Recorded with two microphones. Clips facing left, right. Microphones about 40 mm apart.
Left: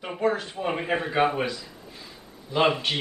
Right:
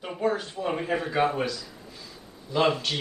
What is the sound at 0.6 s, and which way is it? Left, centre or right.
A woman's voice, left.